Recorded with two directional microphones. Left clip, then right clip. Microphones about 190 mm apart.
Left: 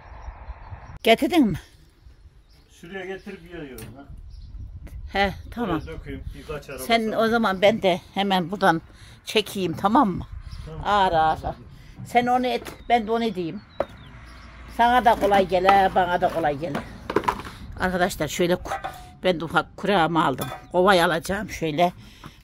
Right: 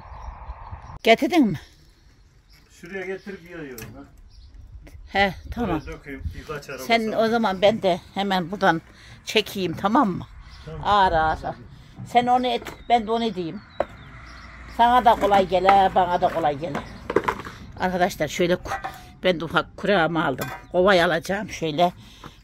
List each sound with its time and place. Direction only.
0.0 s a sound: 50° left (ahead or behind)
1.0 s speech: 5° left (ahead or behind)
2.9 s speech: 5° left (ahead or behind)
5.1 s speech: centre (ahead or behind)
14.8 s speech: 10° left (ahead or behind)
17.1 s a sound: 40° left (ahead or behind)
17.6 s a woman's voice: 10° left (ahead or behind)